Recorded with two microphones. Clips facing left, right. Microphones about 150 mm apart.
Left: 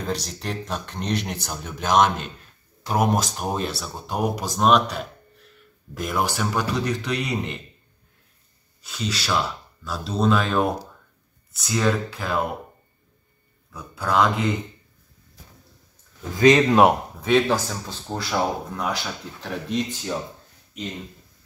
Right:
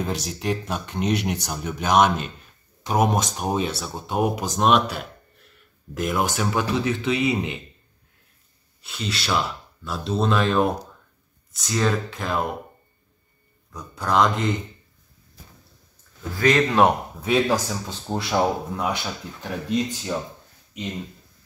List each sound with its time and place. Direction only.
0.0 s speech: 5° right (ahead or behind)
8.8 s speech: centre (ahead or behind)
13.7 s speech: 5° left (ahead or behind)
16.3 s speech: 15° left (ahead or behind)
17.2 s speech: 5° right (ahead or behind)
18.1 s speech: 20° right (ahead or behind)
19.4 s speech: 5° right (ahead or behind)